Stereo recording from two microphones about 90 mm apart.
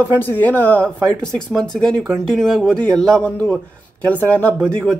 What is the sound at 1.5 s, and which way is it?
Speech, 5° left (ahead or behind).